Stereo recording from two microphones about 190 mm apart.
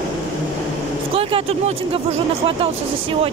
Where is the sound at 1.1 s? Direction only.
30° right (ahead or behind).